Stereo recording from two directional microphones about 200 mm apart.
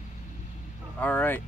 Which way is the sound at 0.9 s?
10° left (ahead or behind).